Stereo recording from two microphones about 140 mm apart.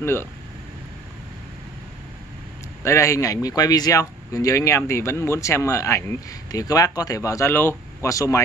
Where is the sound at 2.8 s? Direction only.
20° left (ahead or behind).